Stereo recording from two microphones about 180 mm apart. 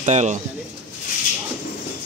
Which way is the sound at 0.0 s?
40° right (ahead or behind).